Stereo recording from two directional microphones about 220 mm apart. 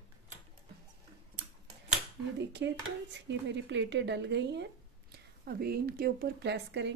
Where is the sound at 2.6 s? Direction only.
55° right (ahead or behind).